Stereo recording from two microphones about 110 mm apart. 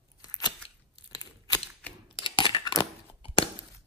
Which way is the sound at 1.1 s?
35° left (ahead or behind).